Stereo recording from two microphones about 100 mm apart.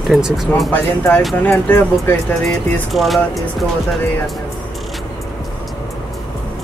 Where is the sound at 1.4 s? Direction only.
20° left (ahead or behind).